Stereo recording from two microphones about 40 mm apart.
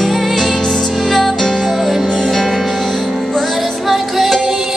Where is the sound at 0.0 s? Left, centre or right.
Centre.